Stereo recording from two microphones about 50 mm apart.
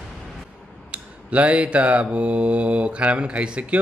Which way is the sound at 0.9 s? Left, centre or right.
Right.